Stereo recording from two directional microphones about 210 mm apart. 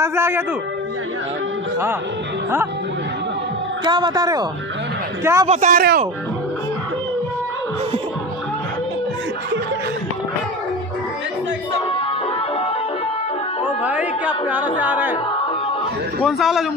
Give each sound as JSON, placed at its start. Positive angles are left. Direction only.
{"t": 0.0, "sound": "a man's voice", "side_deg": -10}
{"t": 3.8, "sound": "a man's voice", "side_deg": -20}
{"t": 5.5, "sound": "a man's voice", "side_deg": -35}
{"t": 13.8, "sound": "music", "side_deg": -5}
{"t": 16.2, "sound": "a man's voice", "side_deg": 0}